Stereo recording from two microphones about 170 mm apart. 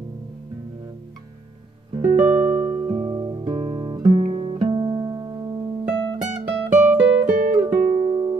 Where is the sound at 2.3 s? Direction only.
25° right (ahead or behind).